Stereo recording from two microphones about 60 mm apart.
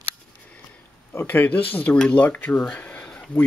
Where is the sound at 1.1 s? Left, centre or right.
Left.